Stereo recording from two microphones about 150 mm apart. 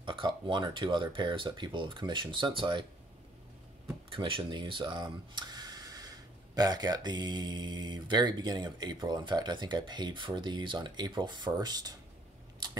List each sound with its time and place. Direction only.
0.0 s speech: 35° right (ahead or behind)
4.1 s speech: 35° right (ahead or behind)